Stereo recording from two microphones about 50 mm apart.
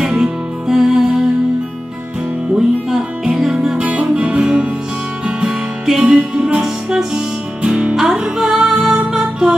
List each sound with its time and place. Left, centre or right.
0.0 s music: centre
2.5 s music: centre
3.7 s music: right
7.9 s music: centre